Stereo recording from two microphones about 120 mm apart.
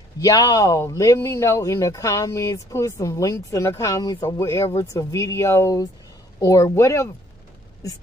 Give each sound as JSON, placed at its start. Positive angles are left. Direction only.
{"t": 0.2, "sound": "speech", "side_deg": 30}